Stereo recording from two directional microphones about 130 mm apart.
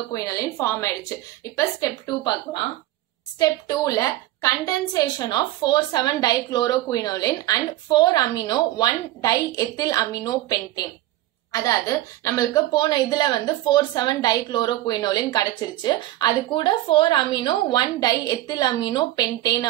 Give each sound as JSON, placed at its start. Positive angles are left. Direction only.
{"t": 0.1, "sound": "a woman's voice", "side_deg": 25}